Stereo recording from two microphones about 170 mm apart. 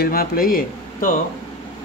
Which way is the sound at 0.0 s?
60° left (ahead or behind).